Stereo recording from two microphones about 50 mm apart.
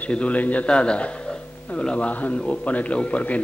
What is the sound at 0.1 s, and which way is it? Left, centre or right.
A man's voice, left.